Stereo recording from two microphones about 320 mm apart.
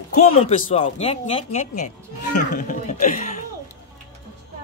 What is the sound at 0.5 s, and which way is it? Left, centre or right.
Speech, centre.